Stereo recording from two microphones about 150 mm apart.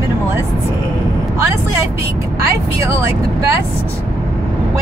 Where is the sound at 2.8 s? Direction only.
20° right (ahead or behind).